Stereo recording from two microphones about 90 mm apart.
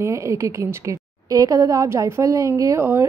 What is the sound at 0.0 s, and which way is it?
A woman's voice, 35° right (ahead or behind).